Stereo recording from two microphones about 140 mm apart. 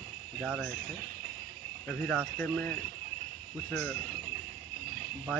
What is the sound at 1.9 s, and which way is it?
Speech, 5° left (ahead or behind).